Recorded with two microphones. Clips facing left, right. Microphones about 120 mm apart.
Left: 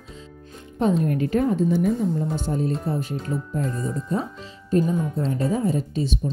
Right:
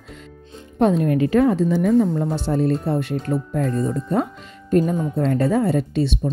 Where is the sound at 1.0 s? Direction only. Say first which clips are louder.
Right 5 dB; 90° right.